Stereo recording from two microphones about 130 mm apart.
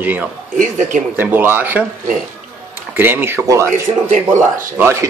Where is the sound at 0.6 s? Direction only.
75° right (ahead or behind).